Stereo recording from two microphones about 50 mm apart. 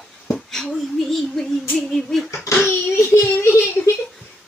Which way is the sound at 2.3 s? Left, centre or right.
Left.